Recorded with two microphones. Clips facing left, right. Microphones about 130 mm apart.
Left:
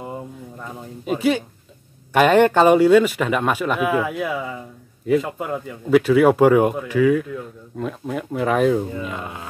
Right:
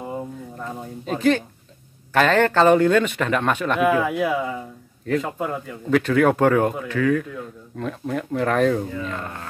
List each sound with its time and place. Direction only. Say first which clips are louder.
1.0 s speech: even; 10° left (ahead or behind)